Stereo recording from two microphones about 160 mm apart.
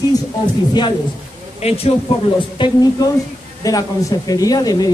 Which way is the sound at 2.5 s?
30° left (ahead or behind).